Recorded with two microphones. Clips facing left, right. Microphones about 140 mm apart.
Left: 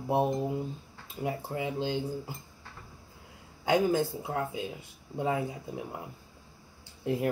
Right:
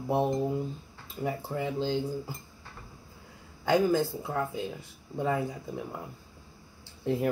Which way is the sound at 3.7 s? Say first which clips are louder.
Right 1 dB; 20° left (ahead or behind).